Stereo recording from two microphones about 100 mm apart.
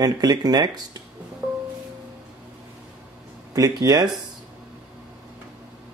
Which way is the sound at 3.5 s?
40° right (ahead or behind).